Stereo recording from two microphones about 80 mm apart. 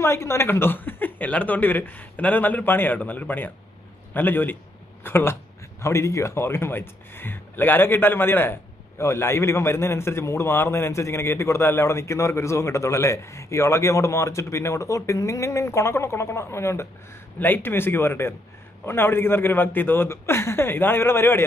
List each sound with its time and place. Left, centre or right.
0.0 s a man's voice: left
17.4 s speech: left